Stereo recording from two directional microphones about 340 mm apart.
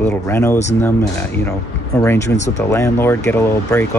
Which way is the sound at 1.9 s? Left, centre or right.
Centre.